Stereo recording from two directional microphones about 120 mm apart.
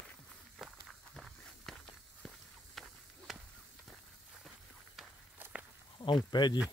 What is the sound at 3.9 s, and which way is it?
Walk, 5° right (ahead or behind).